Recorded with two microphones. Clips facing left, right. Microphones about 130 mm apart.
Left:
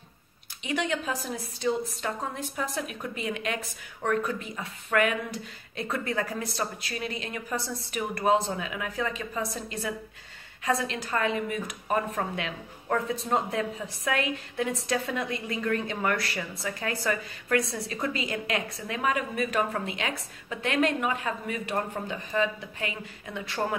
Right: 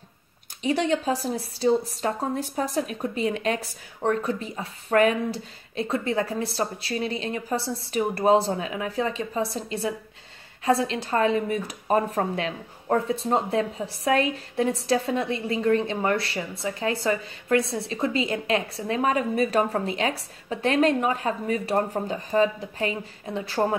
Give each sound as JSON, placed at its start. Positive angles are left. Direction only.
{"t": 0.7, "sound": "a woman's voice", "side_deg": -35}